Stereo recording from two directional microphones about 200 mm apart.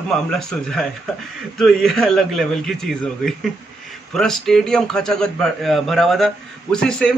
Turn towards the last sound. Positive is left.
turn(degrees=5)  # may be behind; listen again after turning